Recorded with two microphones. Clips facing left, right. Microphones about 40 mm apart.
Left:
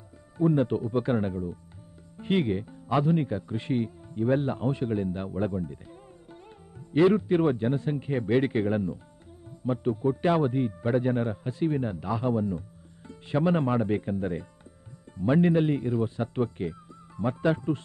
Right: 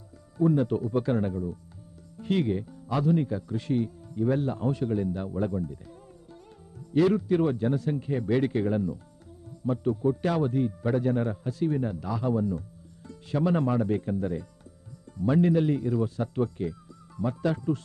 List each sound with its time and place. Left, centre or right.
0.4 s a man's voice: left